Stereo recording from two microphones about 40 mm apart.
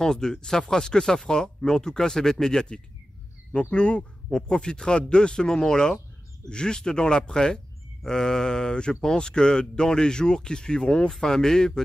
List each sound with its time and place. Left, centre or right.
0.0 s speech: centre
3.5 s speech: left
11.1 s speech: centre